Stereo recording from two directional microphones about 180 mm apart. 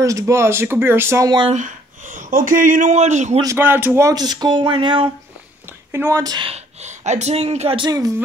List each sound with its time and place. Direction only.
0.0 s speech: 15° right (ahead or behind)
1.5 s speech: 45° right (ahead or behind)
3.3 s speech: 15° right (ahead or behind)
5.9 s speech: 15° right (ahead or behind)